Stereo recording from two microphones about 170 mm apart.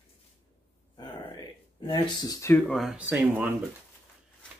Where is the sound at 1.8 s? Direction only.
25° left (ahead or behind).